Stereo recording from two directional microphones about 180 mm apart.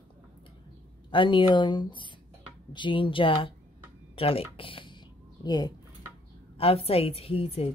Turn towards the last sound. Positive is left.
turn(degrees=35)  # may be behind; listen again after turning